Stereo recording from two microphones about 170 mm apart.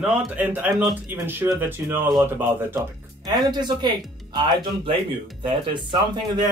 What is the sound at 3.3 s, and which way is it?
Speech, 25° right (ahead or behind).